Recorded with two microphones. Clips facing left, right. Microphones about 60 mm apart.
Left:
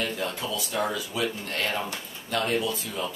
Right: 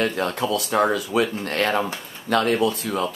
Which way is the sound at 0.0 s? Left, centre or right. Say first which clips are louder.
Right 7 dB; right.